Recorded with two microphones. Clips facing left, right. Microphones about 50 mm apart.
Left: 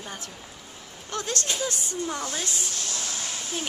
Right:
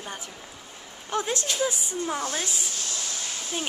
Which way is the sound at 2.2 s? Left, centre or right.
Right.